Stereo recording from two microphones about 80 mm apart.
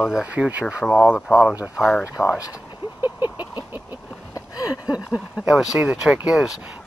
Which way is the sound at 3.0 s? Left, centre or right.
Right.